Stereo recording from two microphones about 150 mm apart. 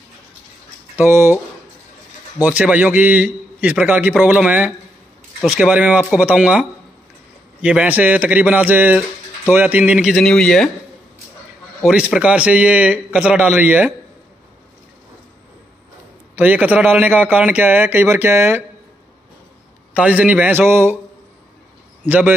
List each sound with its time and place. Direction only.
0.9 s a man's voice: 15° right (ahead or behind)
2.4 s a man's voice: 10° right (ahead or behind)
10.1 s speech: 5° left (ahead or behind)
11.8 s a man's voice: 5° right (ahead or behind)
16.3 s a man's voice: 10° right (ahead or behind)
19.9 s a man's voice: 10° right (ahead or behind)
22.0 s speech: 15° right (ahead or behind)